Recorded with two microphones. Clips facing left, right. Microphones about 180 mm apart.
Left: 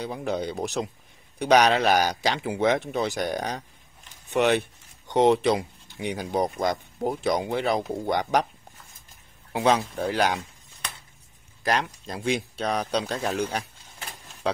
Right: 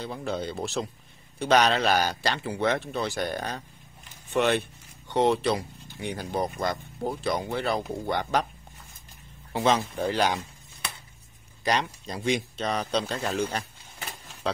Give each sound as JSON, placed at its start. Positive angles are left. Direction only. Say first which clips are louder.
{"t": 0.0, "sound": "speech", "louder": "left 3 dB", "side_deg": 15}
{"t": 9.5, "sound": "speech", "louder": "left 2 dB", "side_deg": 10}
{"t": 11.6, "sound": "speech", "louder": "left 1 dB", "side_deg": 0}